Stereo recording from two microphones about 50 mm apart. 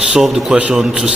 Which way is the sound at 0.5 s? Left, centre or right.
Centre.